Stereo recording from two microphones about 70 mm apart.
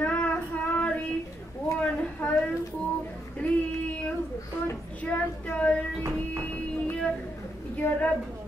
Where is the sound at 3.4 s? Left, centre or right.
Centre.